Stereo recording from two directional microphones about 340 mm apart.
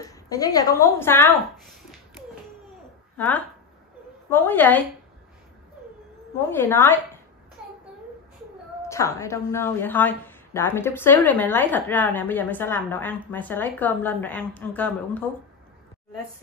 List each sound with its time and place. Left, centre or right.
0.0 s a woman's voice: centre
3.2 s a woman's voice: centre
6.3 s a woman's voice: centre
8.8 s a woman's voice: centre